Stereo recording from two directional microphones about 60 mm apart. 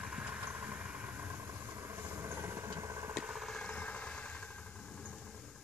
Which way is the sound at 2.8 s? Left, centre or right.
Right.